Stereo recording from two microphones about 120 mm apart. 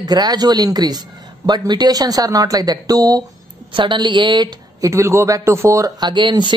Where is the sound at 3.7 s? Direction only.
45° right (ahead or behind); by 5.9 s 25° right (ahead or behind).